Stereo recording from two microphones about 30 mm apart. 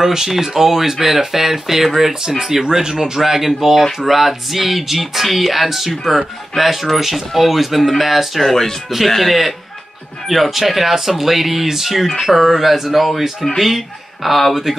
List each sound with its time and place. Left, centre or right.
0.0 s speech: centre
2.2 s speech: centre
8.4 s speech: centre